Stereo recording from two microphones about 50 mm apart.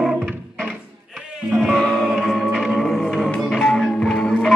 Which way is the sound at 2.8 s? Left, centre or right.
Centre.